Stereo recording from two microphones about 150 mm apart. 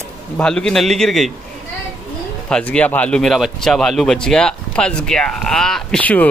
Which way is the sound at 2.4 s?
5° left (ahead or behind).